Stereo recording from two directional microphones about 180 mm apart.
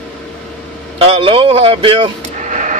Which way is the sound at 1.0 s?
30° right (ahead or behind).